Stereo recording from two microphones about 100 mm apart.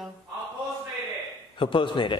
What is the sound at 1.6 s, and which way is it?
Speech, 55° left (ahead or behind).